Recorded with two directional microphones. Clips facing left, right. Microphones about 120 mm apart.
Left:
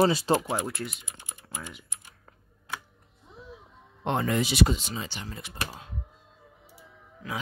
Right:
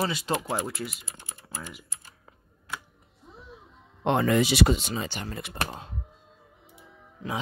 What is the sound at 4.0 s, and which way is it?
Speech, 90° right.